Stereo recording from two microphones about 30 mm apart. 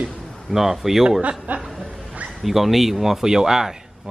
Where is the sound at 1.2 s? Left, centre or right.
Right.